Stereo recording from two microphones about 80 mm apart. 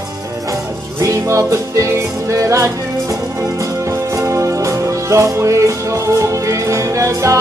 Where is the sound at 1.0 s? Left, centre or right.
Right.